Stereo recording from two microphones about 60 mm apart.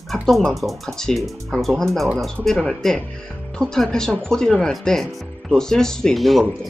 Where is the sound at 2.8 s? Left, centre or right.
Centre.